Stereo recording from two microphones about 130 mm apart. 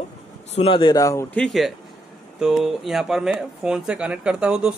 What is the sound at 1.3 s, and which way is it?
Speech, 5° left (ahead or behind).